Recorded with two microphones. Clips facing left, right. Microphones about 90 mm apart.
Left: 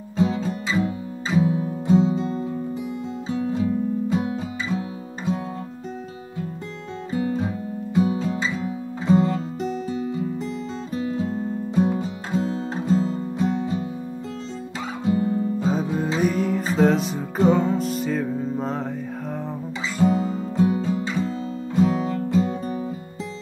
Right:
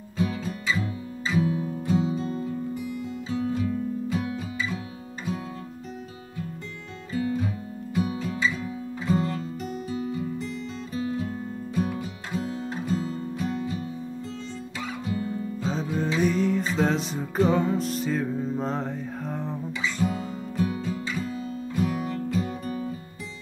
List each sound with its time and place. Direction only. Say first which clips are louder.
0.2 s music: left 6 dB; 25° left (ahead or behind)
7.1 s music: left 3 dB; 25° left (ahead or behind)
15.0 s music: left 10 dB; 30° left (ahead or behind)
16.2 s music: even; 5° left (ahead or behind)
20.0 s music: left 12 dB; 30° left (ahead or behind)